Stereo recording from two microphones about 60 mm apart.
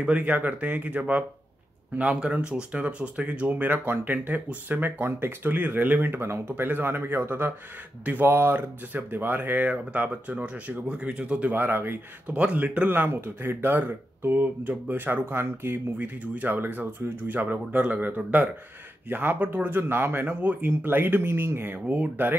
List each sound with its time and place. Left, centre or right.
0.0 s speech: right
11.5 s speech: right
12.4 s speech: right
16.0 s speech: right
21.7 s speech: right